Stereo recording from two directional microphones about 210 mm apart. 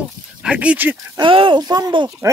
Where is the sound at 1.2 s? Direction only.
25° right (ahead or behind).